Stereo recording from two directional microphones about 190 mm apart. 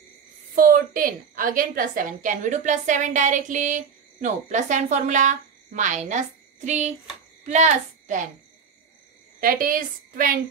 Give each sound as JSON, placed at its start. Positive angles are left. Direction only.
{"t": 0.6, "sound": "a woman's voice", "side_deg": -45}
{"t": 9.4, "sound": "a woman's voice", "side_deg": -50}